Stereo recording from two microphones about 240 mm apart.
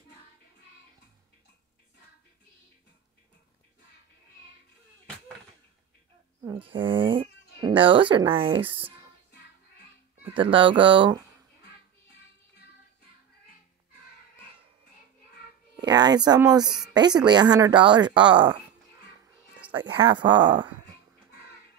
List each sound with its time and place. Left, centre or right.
6.4 s speech: centre
10.1 s speech: right
15.7 s a woman's voice: centre
19.9 s speech: centre